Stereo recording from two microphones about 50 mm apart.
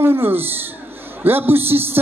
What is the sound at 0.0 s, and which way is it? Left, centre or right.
A man's voice, right.